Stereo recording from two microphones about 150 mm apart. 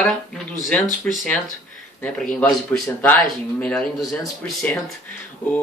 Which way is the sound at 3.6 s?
5° left (ahead or behind).